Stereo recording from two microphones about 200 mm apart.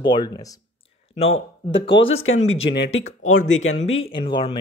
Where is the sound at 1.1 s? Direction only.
30° left (ahead or behind).